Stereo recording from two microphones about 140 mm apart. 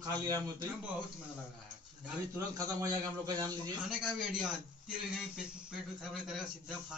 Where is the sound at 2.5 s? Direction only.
25° right (ahead or behind).